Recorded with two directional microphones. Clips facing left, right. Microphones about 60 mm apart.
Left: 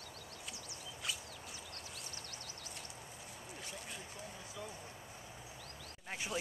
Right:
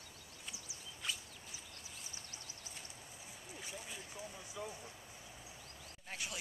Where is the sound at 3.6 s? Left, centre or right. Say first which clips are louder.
Right 1 dB; centre.